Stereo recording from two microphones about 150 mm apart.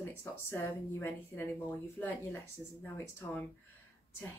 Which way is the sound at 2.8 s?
10° left (ahead or behind).